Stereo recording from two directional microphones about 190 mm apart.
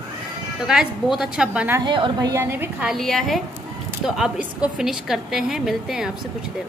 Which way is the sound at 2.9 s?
Centre (ahead or behind).